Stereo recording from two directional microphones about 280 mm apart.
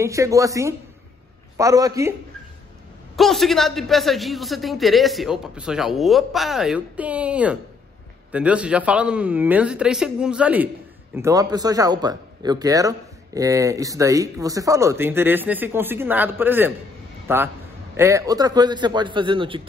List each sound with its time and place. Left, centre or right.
0.0 s a man's voice: centre
3.2 s a man's voice: centre